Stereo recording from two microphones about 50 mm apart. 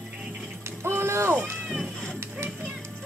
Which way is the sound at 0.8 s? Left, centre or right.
Right.